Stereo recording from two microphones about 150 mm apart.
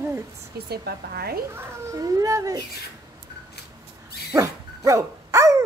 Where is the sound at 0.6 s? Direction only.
90° right.